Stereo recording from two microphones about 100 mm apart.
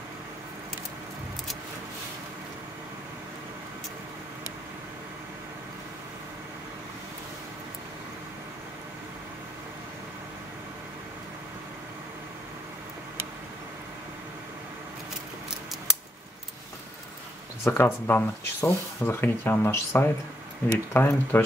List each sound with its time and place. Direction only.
17.6 s speech: 20° left (ahead or behind)